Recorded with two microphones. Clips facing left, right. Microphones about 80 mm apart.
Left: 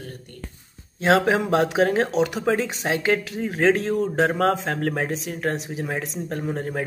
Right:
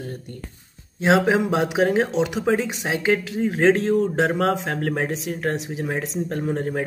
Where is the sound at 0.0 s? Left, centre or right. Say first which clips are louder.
Right 5 dB; right.